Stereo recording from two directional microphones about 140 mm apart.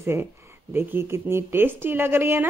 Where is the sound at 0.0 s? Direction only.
20° right (ahead or behind).